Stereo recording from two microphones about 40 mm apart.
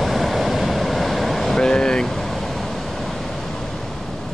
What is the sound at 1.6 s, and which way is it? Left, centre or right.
Vehicle, centre.